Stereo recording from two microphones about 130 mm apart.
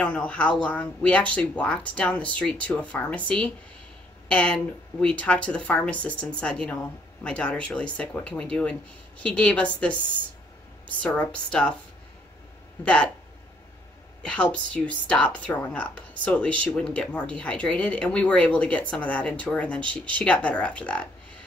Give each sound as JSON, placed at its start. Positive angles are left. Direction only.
{"t": 0.0, "sound": "speech", "side_deg": 10}
{"t": 11.0, "sound": "speech", "side_deg": 10}
{"t": 12.8, "sound": "speech", "side_deg": 10}
{"t": 14.2, "sound": "speech", "side_deg": 10}
{"t": 19.8, "sound": "speech", "side_deg": -40}
{"t": 20.2, "sound": "speech", "side_deg": 10}